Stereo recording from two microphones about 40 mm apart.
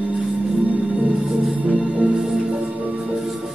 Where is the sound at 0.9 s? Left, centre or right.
Right.